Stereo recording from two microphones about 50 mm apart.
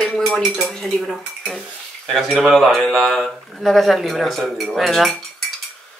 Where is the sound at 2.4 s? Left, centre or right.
Centre.